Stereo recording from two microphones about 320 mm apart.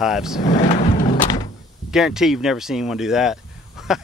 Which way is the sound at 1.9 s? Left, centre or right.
Centre.